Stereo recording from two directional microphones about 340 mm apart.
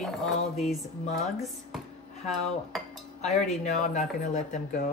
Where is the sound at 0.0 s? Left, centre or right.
Centre.